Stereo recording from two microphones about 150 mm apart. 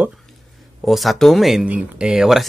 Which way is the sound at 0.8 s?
Centre (ahead or behind).